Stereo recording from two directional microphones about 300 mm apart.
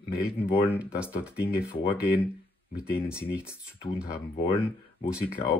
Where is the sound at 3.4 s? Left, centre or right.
Centre.